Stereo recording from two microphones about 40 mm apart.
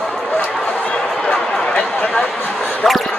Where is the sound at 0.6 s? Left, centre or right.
Left.